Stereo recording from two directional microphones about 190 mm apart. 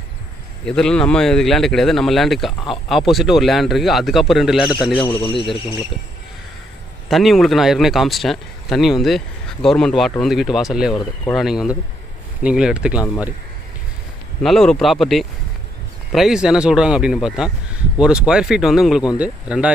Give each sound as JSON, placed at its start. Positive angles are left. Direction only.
{"t": 0.7, "sound": "speech", "side_deg": 5}
{"t": 5.1, "sound": "speech", "side_deg": 25}
{"t": 7.1, "sound": "speech", "side_deg": 0}
{"t": 14.4, "sound": "speech", "side_deg": 0}